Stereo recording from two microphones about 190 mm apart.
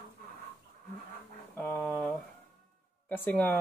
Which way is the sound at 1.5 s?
10° left (ahead or behind).